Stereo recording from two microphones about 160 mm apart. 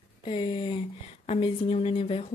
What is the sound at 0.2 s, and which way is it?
Speech, 35° left (ahead or behind).